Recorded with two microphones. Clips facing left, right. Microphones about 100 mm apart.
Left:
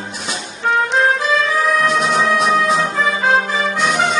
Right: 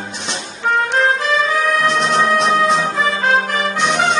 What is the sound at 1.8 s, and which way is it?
Music, centre (ahead or behind).